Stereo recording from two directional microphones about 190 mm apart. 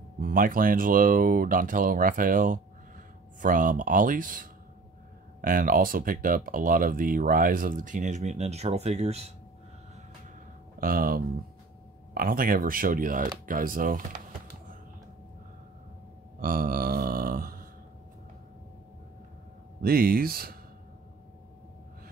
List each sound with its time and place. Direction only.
0.2 s speech: 45° right (ahead or behind)
10.8 s speech: 50° right (ahead or behind)
16.3 s a sound: 50° right (ahead or behind)
19.8 s speech: 50° right (ahead or behind)